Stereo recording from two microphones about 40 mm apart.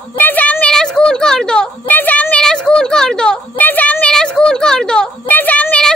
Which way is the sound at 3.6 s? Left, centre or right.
Left.